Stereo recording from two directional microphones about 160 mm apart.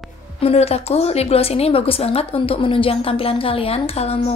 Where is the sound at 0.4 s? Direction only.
40° left (ahead or behind).